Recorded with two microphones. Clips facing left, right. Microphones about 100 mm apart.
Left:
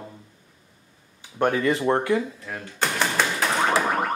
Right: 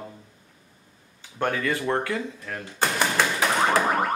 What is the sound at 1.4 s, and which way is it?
Speech, 20° left (ahead or behind).